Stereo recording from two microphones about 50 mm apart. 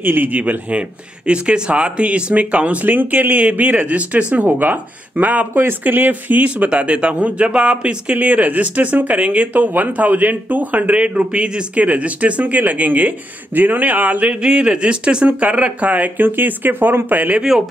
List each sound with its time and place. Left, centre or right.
0.0 s speech: right
4.5 s speech: right
5.5 s speech: right
17.4 s a man's voice: centre